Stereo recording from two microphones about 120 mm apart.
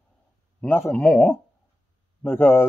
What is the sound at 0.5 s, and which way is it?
Speech, 15° left (ahead or behind).